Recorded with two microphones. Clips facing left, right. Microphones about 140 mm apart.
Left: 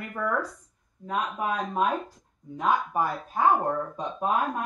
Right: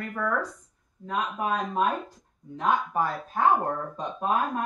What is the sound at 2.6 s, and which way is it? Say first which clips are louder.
Speech: even; 10° left (ahead or behind).